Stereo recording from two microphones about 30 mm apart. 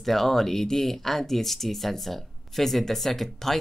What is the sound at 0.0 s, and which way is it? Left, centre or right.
Speech, centre.